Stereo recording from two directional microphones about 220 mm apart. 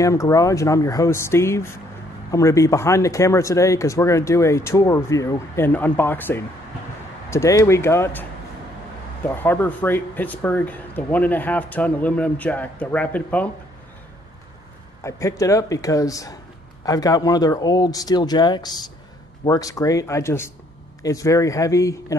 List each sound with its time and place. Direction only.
0.0 s speech: 15° left (ahead or behind)
9.3 s speech: 10° left (ahead or behind)
15.0 s speech: 15° left (ahead or behind)